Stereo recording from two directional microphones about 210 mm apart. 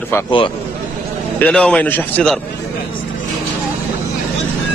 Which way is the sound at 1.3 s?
5° left (ahead or behind).